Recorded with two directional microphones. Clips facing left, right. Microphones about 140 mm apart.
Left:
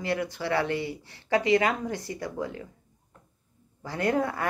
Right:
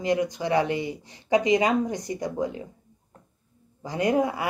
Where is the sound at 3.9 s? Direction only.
15° right (ahead or behind).